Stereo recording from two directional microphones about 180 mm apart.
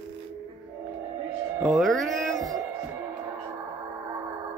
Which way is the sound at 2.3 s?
20° right (ahead or behind).